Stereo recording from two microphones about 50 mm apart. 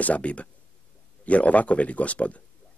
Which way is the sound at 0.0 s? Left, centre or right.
Left.